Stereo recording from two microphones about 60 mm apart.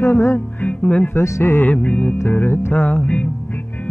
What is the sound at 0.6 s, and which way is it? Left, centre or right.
Music, centre.